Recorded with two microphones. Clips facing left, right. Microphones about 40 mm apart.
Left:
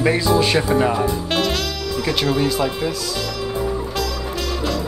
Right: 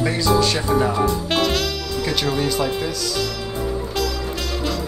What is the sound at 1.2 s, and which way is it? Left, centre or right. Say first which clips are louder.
Music: even; centre.